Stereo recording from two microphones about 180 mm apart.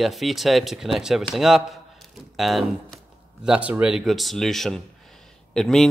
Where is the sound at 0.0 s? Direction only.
Centre (ahead or behind).